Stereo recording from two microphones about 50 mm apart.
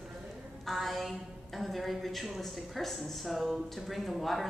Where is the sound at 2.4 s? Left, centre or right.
Centre.